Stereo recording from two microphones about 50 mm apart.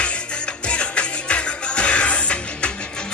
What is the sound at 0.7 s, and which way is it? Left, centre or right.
Music, left.